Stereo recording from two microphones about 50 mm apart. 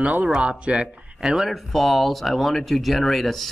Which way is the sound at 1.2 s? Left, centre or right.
Centre.